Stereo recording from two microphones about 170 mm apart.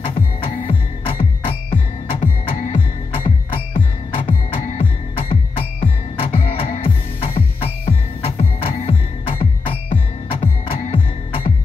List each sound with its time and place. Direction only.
0.0 s music: 35° left (ahead or behind)